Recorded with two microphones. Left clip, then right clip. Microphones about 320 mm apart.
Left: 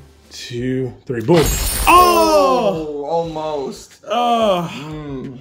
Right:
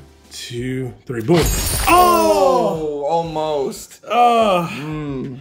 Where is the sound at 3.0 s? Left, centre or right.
Right.